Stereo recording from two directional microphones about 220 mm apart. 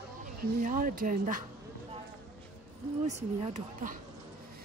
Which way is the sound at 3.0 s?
30° right (ahead or behind).